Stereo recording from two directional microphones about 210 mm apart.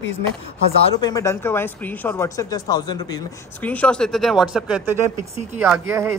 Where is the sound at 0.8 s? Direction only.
20° left (ahead or behind).